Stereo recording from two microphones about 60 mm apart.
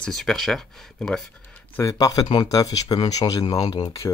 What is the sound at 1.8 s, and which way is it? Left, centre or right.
Speech, left.